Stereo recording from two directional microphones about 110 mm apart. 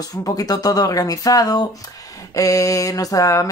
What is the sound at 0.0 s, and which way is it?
Speech, 35° left (ahead or behind).